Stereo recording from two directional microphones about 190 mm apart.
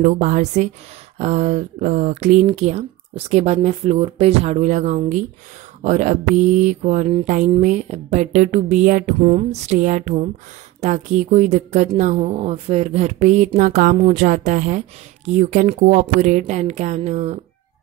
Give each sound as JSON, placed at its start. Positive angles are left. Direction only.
{"t": 0.0, "sound": "mantra", "side_deg": -40}